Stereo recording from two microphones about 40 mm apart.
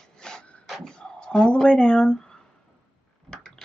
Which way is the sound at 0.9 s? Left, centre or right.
Left.